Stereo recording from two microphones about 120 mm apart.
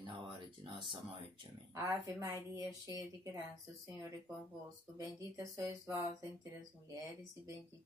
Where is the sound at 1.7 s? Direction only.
25° right (ahead or behind).